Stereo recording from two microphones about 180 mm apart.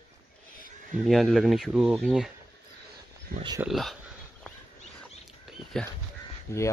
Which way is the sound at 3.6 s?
Centre (ahead or behind).